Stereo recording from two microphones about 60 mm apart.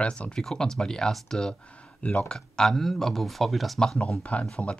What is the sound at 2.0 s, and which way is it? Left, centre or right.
Speech, left.